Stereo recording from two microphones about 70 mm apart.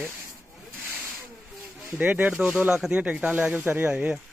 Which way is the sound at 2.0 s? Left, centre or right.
Right.